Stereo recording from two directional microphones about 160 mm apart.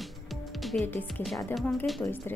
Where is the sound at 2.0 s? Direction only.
15° left (ahead or behind).